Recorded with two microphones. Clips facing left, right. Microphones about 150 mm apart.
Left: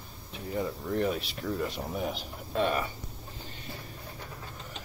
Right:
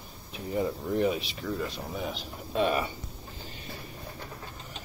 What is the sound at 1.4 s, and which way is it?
Speech, 5° left (ahead or behind).